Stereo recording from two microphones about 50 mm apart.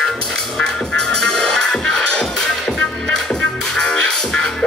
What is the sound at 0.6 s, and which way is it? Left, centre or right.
Music, centre.